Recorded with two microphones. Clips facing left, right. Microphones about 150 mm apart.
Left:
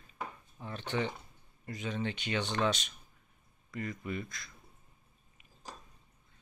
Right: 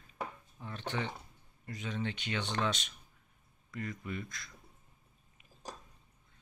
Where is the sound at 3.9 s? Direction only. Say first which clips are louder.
Left 2 dB; 20° left (ahead or behind).